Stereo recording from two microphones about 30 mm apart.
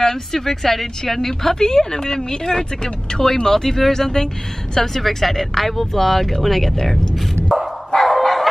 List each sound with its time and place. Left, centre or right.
0.0 s speech: centre
7.5 s dog: centre